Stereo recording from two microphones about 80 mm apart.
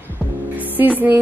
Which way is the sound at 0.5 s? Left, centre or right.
Right.